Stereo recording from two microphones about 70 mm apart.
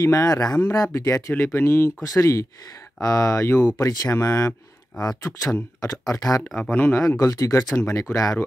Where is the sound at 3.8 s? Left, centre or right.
Left.